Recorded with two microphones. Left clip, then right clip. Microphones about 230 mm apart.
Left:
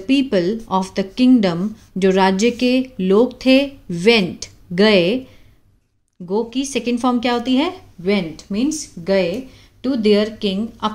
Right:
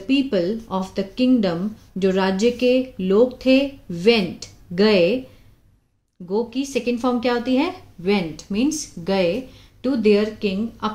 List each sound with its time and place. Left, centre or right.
0.0 s speech: left
6.2 s speech: left; by 9.8 s centre
9.8 s speech: left